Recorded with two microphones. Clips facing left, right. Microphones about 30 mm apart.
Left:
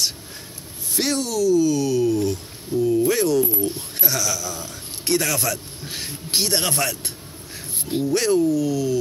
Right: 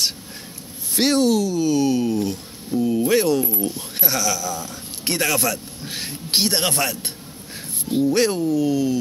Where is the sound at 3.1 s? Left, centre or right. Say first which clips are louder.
Right 1 dB; right.